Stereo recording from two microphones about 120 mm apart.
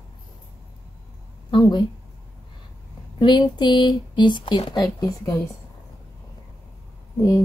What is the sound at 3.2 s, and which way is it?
Speech, 40° left (ahead or behind).